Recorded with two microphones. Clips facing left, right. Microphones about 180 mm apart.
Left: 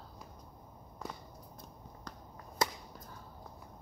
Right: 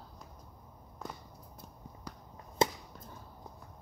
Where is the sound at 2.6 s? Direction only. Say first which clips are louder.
Right 5 dB; 25° right (ahead or behind).